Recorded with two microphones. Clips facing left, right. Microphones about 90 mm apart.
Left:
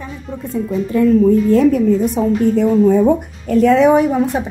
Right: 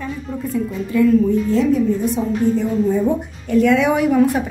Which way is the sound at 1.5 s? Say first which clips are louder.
Left 4 dB; 55° left (ahead or behind).